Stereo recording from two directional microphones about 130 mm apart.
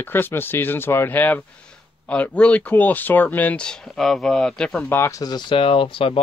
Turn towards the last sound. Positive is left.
turn(degrees=45)  # may be behind; listen again after turning